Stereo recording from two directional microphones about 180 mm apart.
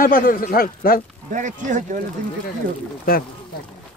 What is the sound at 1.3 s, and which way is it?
Speech, 45° right (ahead or behind).